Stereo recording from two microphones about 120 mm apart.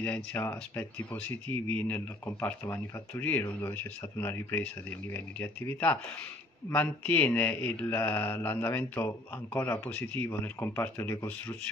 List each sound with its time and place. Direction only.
0.0 s speech: 15° left (ahead or behind)